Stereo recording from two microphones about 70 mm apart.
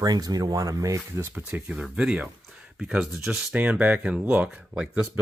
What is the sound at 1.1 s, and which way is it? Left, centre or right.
Speech, right.